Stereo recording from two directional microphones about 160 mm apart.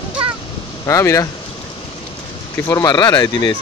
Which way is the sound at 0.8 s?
20° left (ahead or behind).